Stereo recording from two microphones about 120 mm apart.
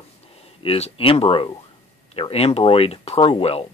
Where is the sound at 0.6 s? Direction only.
55° left (ahead or behind).